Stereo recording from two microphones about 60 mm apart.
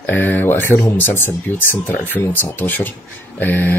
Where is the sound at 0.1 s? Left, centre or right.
Left.